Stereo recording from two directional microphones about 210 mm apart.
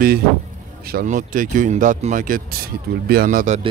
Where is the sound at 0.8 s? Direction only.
40° right (ahead or behind).